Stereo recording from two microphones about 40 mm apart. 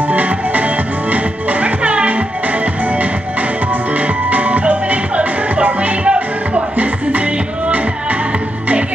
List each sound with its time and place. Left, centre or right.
0.1 s music: right